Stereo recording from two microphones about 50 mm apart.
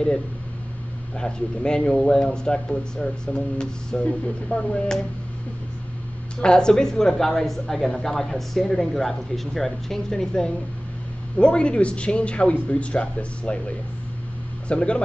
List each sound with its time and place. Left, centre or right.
1.1 s a woman's voice: centre
6.4 s a woman's voice: centre
14.7 s speech: left